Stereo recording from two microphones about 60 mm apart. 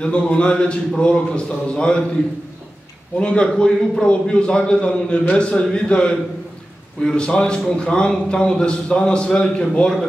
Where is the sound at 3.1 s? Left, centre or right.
Centre.